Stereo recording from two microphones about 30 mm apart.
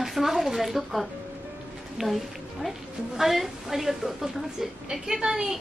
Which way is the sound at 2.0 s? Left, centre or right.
Centre.